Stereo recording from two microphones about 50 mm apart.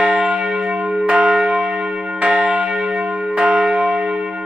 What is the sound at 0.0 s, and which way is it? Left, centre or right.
Church bell, right.